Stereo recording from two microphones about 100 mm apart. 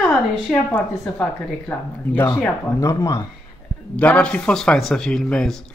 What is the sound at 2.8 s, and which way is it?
Speech, 35° left (ahead or behind).